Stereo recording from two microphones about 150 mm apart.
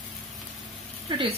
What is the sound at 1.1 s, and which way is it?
Speech, 35° right (ahead or behind).